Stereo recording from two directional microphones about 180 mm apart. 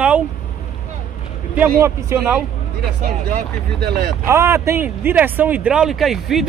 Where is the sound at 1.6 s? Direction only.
15° right (ahead or behind).